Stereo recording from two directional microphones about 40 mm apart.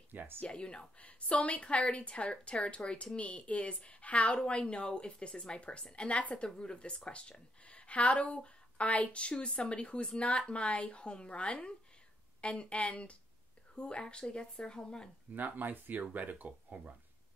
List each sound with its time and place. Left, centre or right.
0.4 s speech: left
15.3 s speech: right